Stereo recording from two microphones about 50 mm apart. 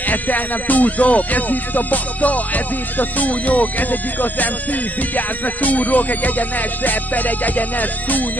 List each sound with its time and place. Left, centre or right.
0.1 s music: left